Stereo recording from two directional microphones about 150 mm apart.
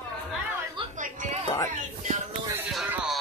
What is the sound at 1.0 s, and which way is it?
Music, 55° right (ahead or behind).